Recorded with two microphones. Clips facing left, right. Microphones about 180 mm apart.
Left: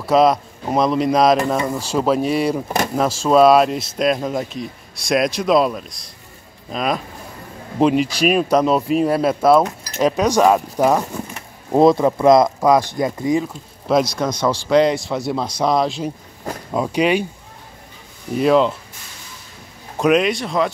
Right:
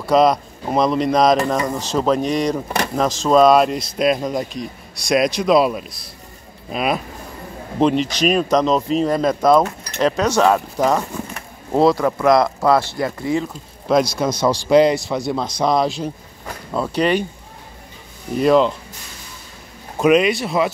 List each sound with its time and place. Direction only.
0.0 s speech: 5° left (ahead or behind)
7.8 s speech: 5° left (ahead or behind)
13.5 s speech: centre (ahead or behind)
16.7 s speech: 10° left (ahead or behind)
18.3 s speech: centre (ahead or behind)
20.0 s speech: centre (ahead or behind)